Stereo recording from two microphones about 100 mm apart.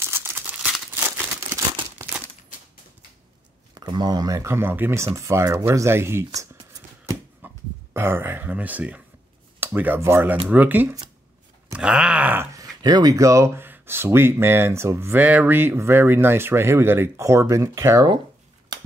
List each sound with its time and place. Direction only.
0.0 s crumpling: 25° right (ahead or behind)
3.7 s speech: 45° right (ahead or behind)
7.4 s a sound: 25° right (ahead or behind)
9.6 s speech: 20° right (ahead or behind)
10.4 s groan: 15° right (ahead or behind)
12.5 s speech: 40° right (ahead or behind)